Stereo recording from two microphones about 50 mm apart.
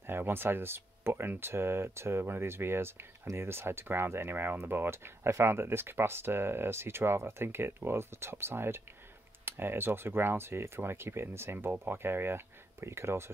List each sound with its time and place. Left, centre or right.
0.0 s speech: right
12.8 s speech: right